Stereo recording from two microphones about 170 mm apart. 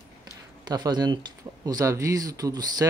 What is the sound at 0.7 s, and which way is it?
Speech, 25° right (ahead or behind).